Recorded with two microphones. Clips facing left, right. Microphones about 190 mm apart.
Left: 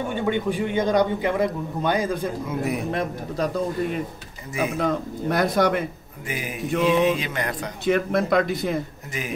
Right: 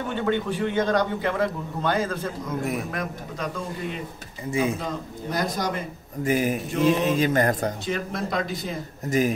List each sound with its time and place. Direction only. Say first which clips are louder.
0.1 s a man's voice: right 1 dB; 10° left (ahead or behind)
2.9 s a man's voice: left 5 dB; 30° left (ahead or behind)
4.5 s speech: right 2 dB; 30° right (ahead or behind)
4.7 s speech: left 7 dB; 60° left (ahead or behind)
6.2 s mantra: right 7 dB; 40° right (ahead or behind)
7.8 s speech: left 7 dB; 60° left (ahead or behind)